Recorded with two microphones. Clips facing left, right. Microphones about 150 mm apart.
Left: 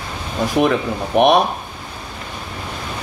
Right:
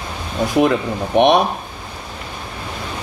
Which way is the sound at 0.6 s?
Centre (ahead or behind).